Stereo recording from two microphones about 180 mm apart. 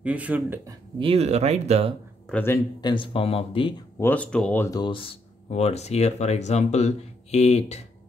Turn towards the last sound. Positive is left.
turn(degrees=35)  # may be behind; listen again after turning